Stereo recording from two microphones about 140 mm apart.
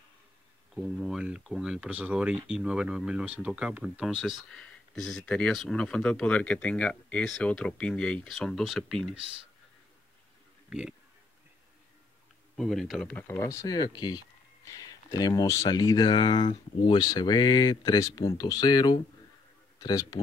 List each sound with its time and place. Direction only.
0.7 s speech: 5° right (ahead or behind)
10.7 s speech: 5° right (ahead or behind)
12.5 s speech: centre (ahead or behind)
13.3 s speech: 20° left (ahead or behind)